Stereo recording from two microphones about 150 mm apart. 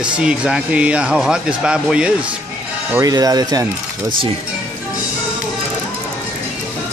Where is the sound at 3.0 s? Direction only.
25° right (ahead or behind).